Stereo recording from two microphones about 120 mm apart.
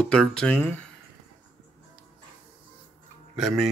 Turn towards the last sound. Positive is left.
turn(degrees=0)  # may be behind; listen again after turning